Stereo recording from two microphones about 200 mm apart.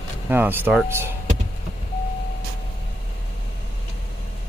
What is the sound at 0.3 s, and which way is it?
Speech, 10° right (ahead or behind).